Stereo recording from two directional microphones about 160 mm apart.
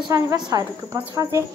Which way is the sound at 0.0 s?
25° right (ahead or behind).